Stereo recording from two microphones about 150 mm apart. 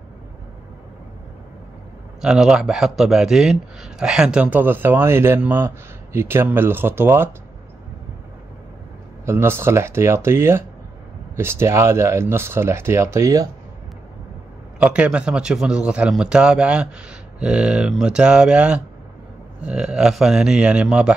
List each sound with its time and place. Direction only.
2.2 s speech: 5° right (ahead or behind)
9.2 s speech: 15° right (ahead or behind)
14.8 s speech: 10° right (ahead or behind)